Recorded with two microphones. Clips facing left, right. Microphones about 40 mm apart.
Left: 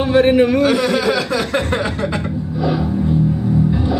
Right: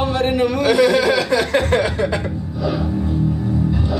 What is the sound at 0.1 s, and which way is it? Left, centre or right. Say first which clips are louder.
Speech: left 6 dB; centre.